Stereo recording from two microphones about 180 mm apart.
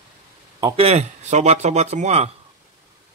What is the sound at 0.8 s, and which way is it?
Speech, 35° right (ahead or behind).